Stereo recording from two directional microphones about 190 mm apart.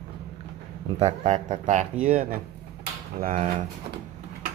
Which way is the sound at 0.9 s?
35° right (ahead or behind).